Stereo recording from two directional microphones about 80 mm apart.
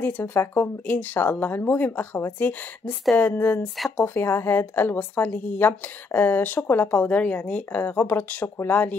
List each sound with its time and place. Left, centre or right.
0.0 s speech: left